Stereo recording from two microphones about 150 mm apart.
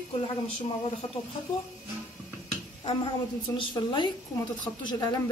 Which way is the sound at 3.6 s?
30° left (ahead or behind).